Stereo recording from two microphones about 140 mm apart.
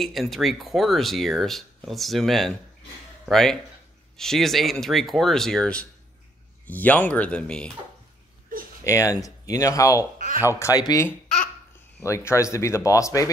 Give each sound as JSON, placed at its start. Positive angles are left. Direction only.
{"t": 0.0, "sound": "speech", "side_deg": 0}
{"t": 8.8, "sound": "speech", "side_deg": 25}
{"t": 10.1, "sound": "speech", "side_deg": -75}
{"t": 10.6, "sound": "speech", "side_deg": 25}
{"t": 12.3, "sound": "speech", "side_deg": 20}